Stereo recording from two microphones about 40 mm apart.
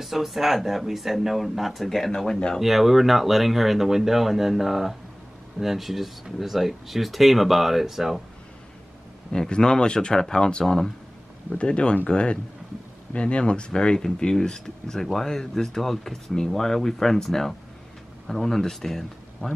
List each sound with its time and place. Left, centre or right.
0.0 s speech: centre
2.6 s speech: centre
9.3 s speech: centre
11.5 s speech: left; by 19.5 s centre